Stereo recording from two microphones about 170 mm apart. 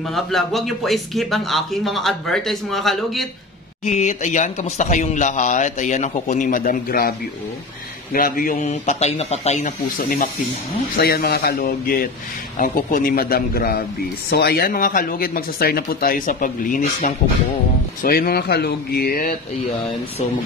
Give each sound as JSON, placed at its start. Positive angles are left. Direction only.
{"t": 0.1, "sound": "speech", "side_deg": 0}
{"t": 3.8, "sound": "speech", "side_deg": 45}